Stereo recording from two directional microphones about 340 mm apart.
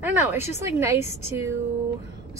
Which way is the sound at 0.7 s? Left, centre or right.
Centre.